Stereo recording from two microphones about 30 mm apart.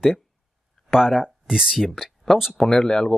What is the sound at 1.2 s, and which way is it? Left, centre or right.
Speech, centre.